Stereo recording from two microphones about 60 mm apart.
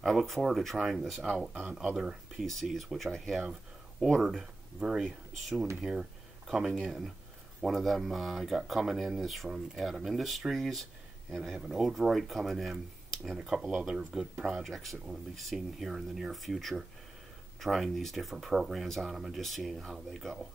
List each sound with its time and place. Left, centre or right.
0.0 s speech: centre
1.3 s speech: centre
1.8 s speech: centre
2.4 s speech: centre